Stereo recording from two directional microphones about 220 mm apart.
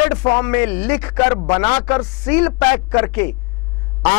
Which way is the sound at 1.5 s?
25° left (ahead or behind).